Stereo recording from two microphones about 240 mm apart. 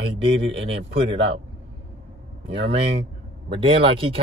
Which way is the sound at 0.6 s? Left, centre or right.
Right.